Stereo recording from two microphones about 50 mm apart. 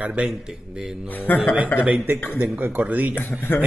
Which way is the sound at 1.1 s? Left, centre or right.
Left.